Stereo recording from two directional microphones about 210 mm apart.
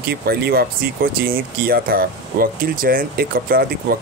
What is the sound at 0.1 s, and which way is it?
Speech, 50° right (ahead or behind).